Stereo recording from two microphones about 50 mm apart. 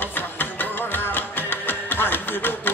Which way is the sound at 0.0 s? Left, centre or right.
Left.